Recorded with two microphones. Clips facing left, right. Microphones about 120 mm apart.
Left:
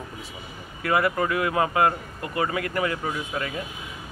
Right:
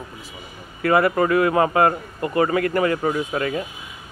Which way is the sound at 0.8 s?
50° right (ahead or behind).